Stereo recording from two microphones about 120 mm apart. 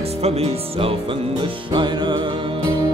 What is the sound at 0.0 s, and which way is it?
Music, 60° right (ahead or behind).